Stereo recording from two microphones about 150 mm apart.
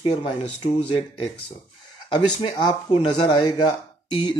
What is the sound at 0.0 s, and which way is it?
Speech, 40° left (ahead or behind).